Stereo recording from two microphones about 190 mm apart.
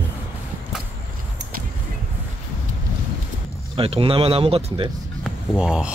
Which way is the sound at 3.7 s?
30° right (ahead or behind).